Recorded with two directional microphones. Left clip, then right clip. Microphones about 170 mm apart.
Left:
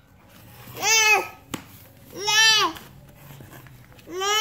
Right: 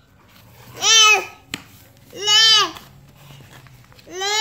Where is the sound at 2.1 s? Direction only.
10° left (ahead or behind).